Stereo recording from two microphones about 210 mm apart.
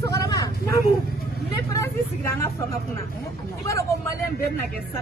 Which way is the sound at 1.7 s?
15° left (ahead or behind).